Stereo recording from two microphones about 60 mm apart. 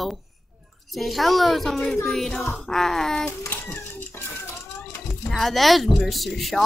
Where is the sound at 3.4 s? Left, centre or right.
Left.